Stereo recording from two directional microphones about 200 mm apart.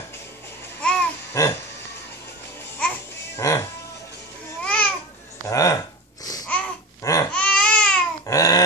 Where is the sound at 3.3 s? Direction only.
15° left (ahead or behind).